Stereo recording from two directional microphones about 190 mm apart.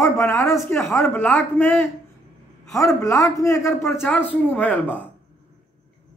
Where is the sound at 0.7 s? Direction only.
15° left (ahead or behind).